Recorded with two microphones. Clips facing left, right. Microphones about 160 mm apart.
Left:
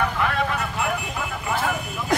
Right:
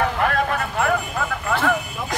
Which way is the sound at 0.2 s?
45° right (ahead or behind).